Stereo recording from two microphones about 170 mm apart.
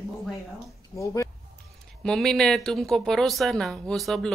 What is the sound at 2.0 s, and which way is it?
Speech, centre (ahead or behind).